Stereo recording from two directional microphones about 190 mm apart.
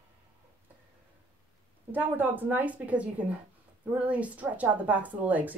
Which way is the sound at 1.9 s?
10° right (ahead or behind).